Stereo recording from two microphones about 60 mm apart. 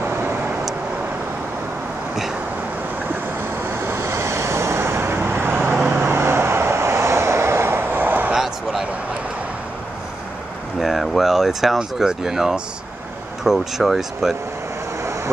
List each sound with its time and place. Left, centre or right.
0.0 s vehicle: right
3.8 s vehicle: right
6.0 s vehicle: right
8.3 s a sound: centre
10.8 s a sound: centre
13.4 s speech: centre